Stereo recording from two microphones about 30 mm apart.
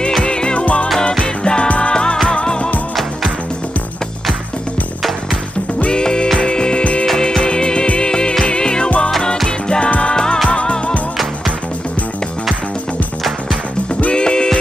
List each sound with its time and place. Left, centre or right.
0.2 s music: left
0.6 s music: left
1.4 s music: left
5.9 s music: left
6.8 s music: left
7.2 s music: centre
9.8 s music: left
10.1 s music: left
14.1 s music: left